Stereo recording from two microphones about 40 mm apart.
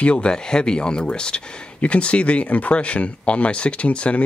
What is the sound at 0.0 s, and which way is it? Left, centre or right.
Speech, left.